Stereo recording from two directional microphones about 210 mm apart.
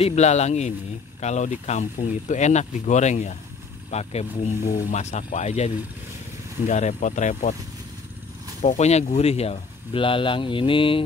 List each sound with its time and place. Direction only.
0.0 s speech: 35° left (ahead or behind)
6.7 s speech: 35° left (ahead or behind)
8.6 s speech: 30° left (ahead or behind)